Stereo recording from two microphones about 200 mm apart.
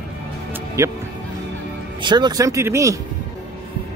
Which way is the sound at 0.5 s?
15° right (ahead or behind).